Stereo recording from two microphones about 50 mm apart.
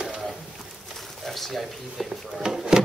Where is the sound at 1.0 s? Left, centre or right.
Centre.